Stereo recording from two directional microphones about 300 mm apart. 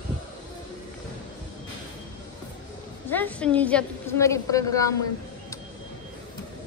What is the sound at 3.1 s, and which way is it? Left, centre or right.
A woman's voice, centre.